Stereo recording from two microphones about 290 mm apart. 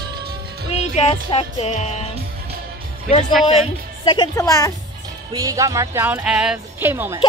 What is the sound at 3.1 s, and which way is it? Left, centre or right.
Speech, centre.